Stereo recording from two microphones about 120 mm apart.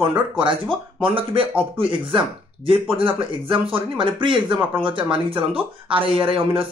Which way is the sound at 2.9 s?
45° right (ahead or behind).